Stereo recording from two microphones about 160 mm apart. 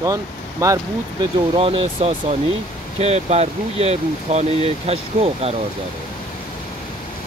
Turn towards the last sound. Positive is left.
turn(degrees=-40)  # may be behind; listen again after turning